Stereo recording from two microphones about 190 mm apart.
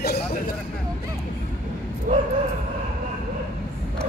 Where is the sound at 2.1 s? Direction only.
40° right (ahead or behind).